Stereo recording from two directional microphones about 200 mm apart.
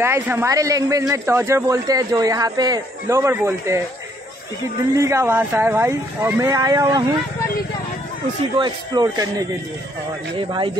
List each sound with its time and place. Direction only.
0.0 s a man's voice: 10° right (ahead or behind)
4.9 s a man's voice: 15° right (ahead or behind)
8.5 s speech: 20° right (ahead or behind)